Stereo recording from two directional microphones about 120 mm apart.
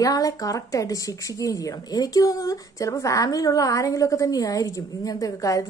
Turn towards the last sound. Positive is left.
turn(degrees=30)  # may be behind; listen again after turning